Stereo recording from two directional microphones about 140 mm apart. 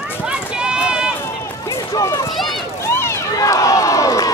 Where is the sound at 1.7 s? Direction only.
25° left (ahead or behind).